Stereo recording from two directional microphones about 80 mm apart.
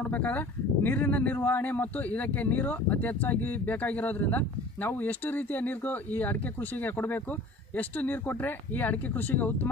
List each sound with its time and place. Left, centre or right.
0.0 s speech: centre